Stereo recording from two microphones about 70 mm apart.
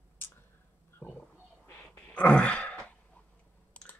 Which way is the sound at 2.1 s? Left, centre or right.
Centre.